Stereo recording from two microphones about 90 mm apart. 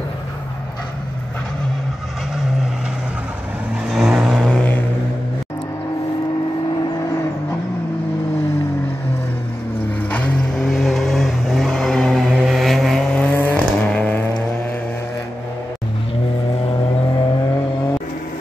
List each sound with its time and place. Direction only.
3.8 s vehicle: 10° right (ahead or behind)
4.6 s vehicle: 20° left (ahead or behind)
10.1 s vehicle: 15° left (ahead or behind)
10.6 s vehicle: centre (ahead or behind)
13.1 s vehicle: 15° left (ahead or behind)